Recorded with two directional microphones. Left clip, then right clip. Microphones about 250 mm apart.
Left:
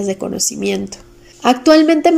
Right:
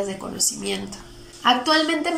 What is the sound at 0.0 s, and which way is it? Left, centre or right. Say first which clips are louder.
Speech: left 7 dB; left.